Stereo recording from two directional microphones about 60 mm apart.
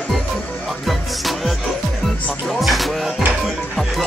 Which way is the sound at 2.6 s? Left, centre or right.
Centre.